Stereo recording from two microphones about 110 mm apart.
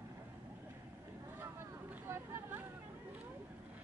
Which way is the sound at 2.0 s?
25° right (ahead or behind).